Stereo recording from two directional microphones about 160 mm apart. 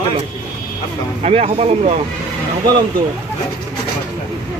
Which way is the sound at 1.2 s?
40° right (ahead or behind).